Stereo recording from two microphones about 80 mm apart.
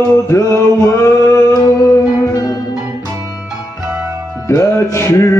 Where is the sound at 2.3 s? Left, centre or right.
Left.